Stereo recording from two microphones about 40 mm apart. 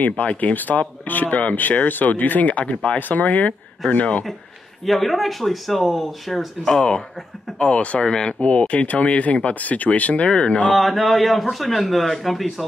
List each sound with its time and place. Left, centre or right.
0.1 s speech: left
3.0 s speech: left
4.8 s speech: centre
7.5 s speech: left
10.3 s speech: left
10.7 s speech: centre